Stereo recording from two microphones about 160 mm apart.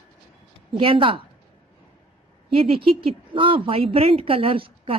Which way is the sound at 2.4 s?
35° right (ahead or behind).